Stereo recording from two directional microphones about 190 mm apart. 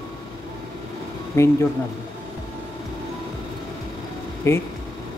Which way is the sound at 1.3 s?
15° left (ahead or behind).